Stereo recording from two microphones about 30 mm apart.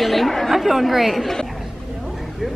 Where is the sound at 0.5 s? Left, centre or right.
Centre.